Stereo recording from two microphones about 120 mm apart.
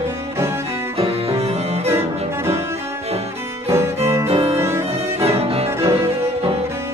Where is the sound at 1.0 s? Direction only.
55° right (ahead or behind).